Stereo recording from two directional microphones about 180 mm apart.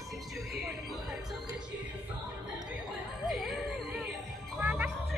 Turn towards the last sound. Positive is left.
turn(degrees=-10)  # may be behind; listen again after turning